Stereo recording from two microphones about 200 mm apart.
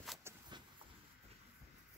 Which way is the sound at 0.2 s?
20° right (ahead or behind).